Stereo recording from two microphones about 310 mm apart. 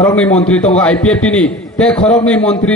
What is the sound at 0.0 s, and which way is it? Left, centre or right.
A man's voice, centre.